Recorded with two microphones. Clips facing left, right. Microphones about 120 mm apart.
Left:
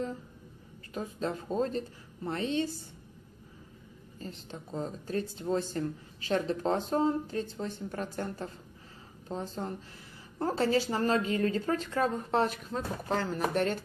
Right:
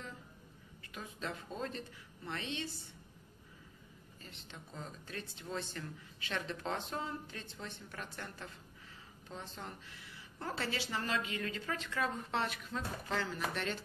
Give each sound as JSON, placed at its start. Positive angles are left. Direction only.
{"t": 0.9, "sound": "speech", "side_deg": 35}
{"t": 4.2, "sound": "speech", "side_deg": 40}